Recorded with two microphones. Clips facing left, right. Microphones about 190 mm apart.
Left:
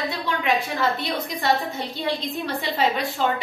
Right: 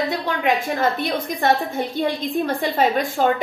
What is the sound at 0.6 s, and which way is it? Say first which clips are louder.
A woman's voice: right 3 dB; 50° right (ahead or behind).